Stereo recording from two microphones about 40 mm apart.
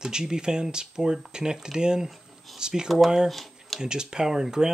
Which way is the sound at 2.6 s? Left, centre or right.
Centre.